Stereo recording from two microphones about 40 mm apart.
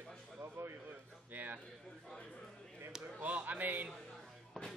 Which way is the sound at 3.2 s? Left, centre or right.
Right.